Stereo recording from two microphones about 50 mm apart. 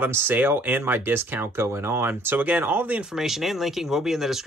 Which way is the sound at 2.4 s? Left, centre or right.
Right.